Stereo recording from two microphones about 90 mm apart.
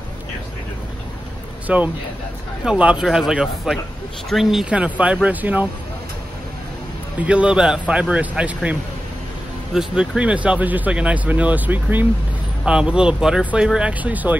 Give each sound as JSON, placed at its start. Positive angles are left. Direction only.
{"t": 1.7, "sound": "speech", "side_deg": -15}
{"t": 7.2, "sound": "speech", "side_deg": -15}
{"t": 9.8, "sound": "speech", "side_deg": -10}
{"t": 12.6, "sound": "speech", "side_deg": -10}